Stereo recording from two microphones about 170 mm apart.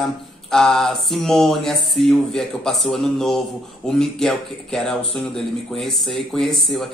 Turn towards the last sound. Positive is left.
turn(degrees=0)  # may be behind; listen again after turning